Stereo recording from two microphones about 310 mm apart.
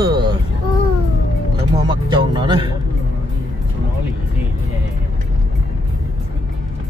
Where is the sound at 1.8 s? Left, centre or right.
Centre.